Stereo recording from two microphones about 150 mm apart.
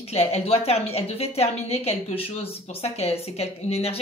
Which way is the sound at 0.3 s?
40° left (ahead or behind).